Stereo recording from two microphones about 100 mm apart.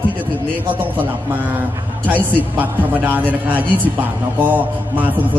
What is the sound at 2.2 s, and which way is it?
A man's voice, 20° right (ahead or behind).